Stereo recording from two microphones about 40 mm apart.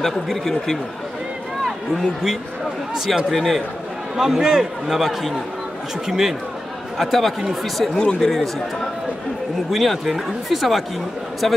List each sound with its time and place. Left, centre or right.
0.0 s a man's voice: centre
7.0 s speech: centre
7.9 s speech: centre
9.7 s speech: centre